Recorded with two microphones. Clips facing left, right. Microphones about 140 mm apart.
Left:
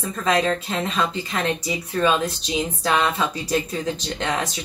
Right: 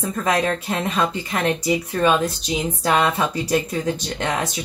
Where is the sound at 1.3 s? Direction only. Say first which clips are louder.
Right 4 dB; 15° right (ahead or behind).